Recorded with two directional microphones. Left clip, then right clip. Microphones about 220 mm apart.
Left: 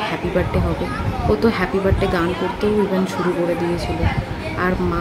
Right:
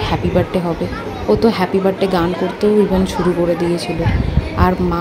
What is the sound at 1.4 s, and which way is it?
A woman's voice, 15° right (ahead or behind).